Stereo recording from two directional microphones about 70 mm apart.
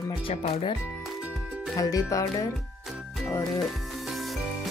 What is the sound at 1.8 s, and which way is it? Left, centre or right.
Speech, left.